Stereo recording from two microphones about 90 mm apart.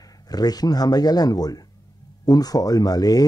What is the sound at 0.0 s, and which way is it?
Speech, 45° left (ahead or behind).